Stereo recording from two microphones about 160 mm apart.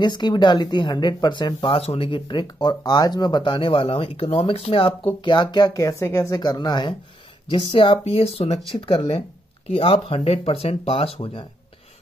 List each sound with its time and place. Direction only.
0.0 s speech: 30° left (ahead or behind)